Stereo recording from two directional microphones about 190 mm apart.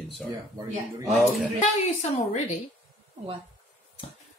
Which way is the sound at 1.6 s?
35° left (ahead or behind).